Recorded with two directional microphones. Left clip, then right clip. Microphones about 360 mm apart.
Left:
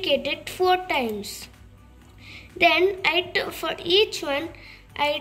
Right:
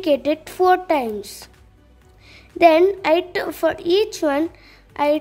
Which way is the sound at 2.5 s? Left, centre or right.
Right.